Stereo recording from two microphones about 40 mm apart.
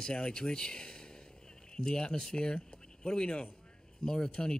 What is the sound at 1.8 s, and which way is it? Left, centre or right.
Speech, centre.